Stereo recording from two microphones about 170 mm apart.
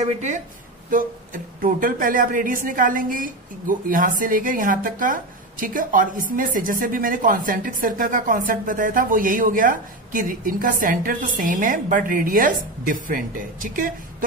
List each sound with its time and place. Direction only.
0.0 s a woman's voice: 45° right (ahead or behind)